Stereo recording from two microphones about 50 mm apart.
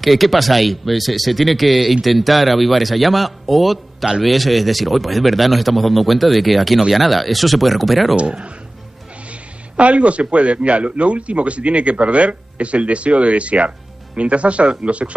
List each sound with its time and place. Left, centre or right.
0.0 s speech: centre
8.2 s a man's voice: right